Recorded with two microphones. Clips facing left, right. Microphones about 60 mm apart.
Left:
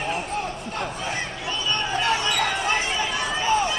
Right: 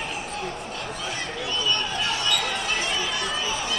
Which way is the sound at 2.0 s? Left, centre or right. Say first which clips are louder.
Left 6 dB; left.